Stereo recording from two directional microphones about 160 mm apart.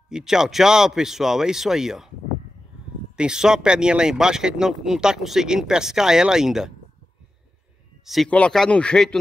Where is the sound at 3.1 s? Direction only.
5° right (ahead or behind).